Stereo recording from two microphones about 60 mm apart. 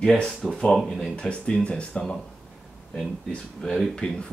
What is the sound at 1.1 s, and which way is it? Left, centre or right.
Speech, centre.